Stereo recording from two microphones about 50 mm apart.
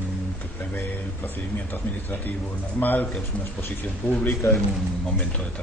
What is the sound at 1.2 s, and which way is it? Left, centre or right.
Speech, left.